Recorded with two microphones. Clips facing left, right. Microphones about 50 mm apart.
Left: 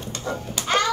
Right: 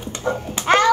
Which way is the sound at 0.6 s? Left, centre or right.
Right.